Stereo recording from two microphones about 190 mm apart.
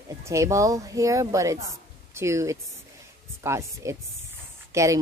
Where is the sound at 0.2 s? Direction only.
15° right (ahead or behind).